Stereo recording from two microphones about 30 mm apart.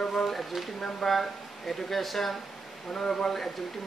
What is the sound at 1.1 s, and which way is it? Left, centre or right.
Speech, centre.